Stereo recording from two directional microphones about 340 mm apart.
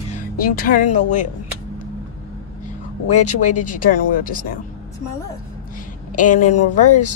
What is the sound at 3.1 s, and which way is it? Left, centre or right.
Music, left.